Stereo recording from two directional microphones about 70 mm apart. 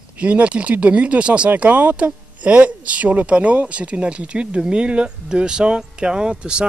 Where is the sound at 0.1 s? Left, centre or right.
Centre.